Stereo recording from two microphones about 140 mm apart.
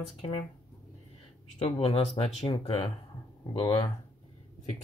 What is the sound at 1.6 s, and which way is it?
Speech, 45° left (ahead or behind).